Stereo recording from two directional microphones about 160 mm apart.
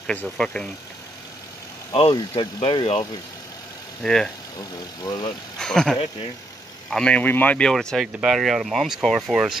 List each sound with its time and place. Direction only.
0.0 s speech: 5° left (ahead or behind)
1.9 s speech: 35° left (ahead or behind)
4.0 s speech: 5° left (ahead or behind)
4.6 s speech: 25° left (ahead or behind)
5.6 s speech: 5° left (ahead or behind)